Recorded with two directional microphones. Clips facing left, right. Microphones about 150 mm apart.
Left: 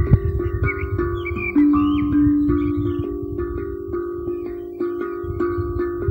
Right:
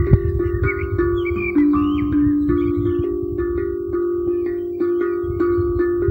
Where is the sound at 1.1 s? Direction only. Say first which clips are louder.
Even; 20° left (ahead or behind).